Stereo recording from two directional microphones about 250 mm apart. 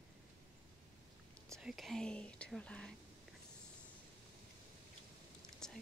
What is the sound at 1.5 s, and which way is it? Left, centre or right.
Speech, centre.